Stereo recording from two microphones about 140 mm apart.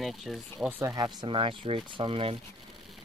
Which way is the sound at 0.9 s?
35° right (ahead or behind).